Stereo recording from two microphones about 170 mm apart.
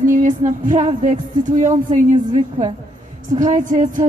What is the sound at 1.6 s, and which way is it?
Speech, 45° right (ahead or behind).